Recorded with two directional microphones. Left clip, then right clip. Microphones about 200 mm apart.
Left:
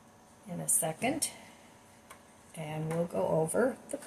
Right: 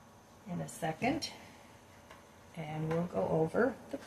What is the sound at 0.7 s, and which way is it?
Speech, 40° left (ahead or behind).